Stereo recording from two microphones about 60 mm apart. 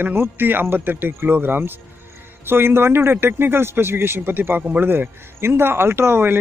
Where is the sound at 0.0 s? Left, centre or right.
Right.